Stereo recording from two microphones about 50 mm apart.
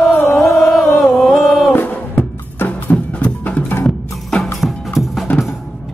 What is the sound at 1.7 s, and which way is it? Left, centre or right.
Music, left.